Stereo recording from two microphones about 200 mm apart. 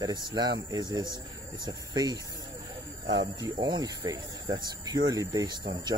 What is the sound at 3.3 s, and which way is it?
Speech, 20° right (ahead or behind).